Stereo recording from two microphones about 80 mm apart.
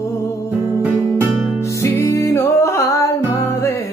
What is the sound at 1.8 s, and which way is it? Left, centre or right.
Music, left.